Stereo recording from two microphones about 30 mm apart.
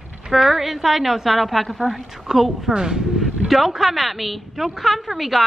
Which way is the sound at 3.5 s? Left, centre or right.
Centre.